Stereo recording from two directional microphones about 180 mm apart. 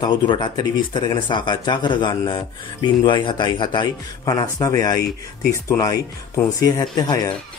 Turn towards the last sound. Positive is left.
turn(degrees=25)  # may be behind; listen again after turning